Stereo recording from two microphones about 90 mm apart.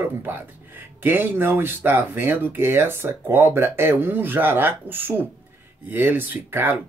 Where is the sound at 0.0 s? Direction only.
25° right (ahead or behind).